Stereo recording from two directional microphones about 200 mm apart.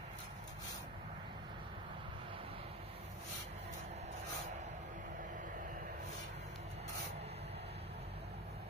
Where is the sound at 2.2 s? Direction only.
30° right (ahead or behind).